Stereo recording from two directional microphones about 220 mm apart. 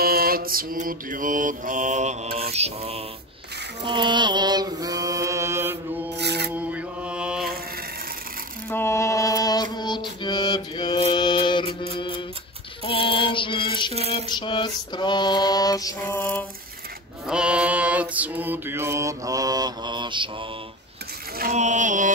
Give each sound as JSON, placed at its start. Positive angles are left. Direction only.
{"t": 0.0, "sound": "mantra", "side_deg": -45}
{"t": 6.1, "sound": "a sound", "side_deg": -50}
{"t": 6.5, "sound": "mantra", "side_deg": -5}
{"t": 8.6, "sound": "music", "side_deg": 10}
{"t": 12.8, "sound": "mantra", "side_deg": 25}
{"t": 14.0, "sound": "a sound", "side_deg": 20}
{"t": 17.3, "sound": "mantra", "side_deg": -5}
{"t": 21.4, "sound": "mantra", "side_deg": -35}